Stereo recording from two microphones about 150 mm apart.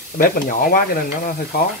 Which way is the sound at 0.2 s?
70° left (ahead or behind).